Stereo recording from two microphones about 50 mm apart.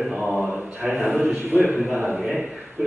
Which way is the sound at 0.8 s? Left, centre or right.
Right.